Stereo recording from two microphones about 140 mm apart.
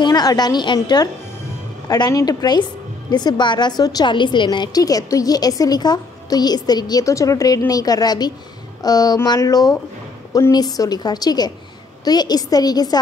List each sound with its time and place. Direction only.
0.0 s a woman's voice: 30° left (ahead or behind)